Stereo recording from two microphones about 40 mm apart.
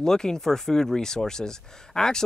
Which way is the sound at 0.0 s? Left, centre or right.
Centre.